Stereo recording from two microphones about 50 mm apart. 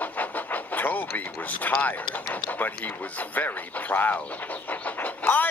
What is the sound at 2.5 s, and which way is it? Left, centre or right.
Speech, left.